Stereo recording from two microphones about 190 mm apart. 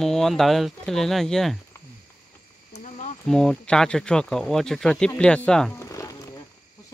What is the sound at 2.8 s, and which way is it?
Cricket, 40° left (ahead or behind).